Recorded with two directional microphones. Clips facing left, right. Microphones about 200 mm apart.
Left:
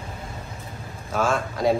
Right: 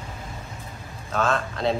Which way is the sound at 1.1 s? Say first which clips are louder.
Left 1 dB; 10° left (ahead or behind).